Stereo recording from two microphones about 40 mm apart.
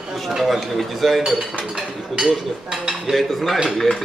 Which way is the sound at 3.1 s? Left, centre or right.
Centre.